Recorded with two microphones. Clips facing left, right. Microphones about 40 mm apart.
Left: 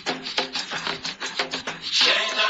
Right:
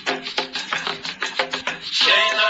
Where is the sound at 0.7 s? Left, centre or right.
Right.